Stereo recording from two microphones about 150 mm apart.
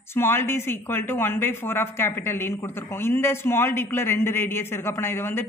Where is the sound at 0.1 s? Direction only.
15° left (ahead or behind).